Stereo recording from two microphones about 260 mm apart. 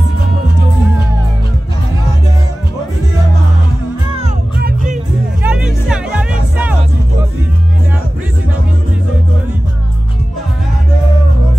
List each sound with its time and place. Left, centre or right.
4.6 s music: right
5.4 s music: centre